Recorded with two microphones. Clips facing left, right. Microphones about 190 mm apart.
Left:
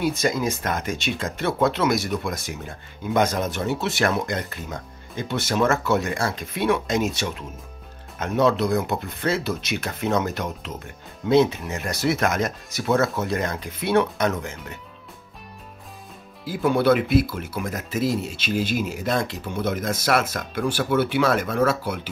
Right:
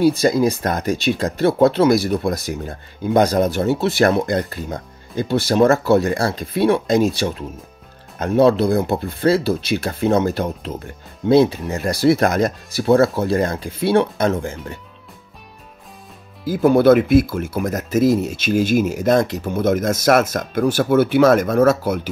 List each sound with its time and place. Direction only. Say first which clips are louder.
0.0 s speech: right 8 dB; 35° right (ahead or behind)
16.4 s speech: right 7 dB; 45° right (ahead or behind)